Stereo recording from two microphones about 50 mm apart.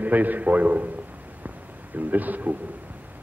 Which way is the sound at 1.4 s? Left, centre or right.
Right.